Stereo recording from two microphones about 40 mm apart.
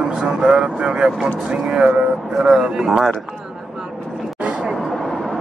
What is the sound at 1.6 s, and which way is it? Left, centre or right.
Speech, right.